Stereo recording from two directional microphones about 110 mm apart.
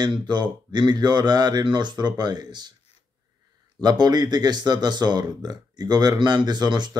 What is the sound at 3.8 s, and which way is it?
A man's voice, 40° right (ahead or behind).